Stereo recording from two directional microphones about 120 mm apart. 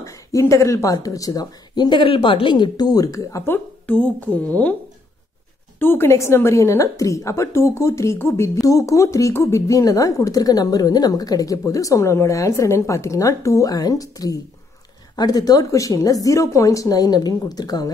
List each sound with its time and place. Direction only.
0.0 s a woman's voice: 25° left (ahead or behind)
5.8 s a woman's voice: 20° left (ahead or behind); by 17.8 s 35° left (ahead or behind)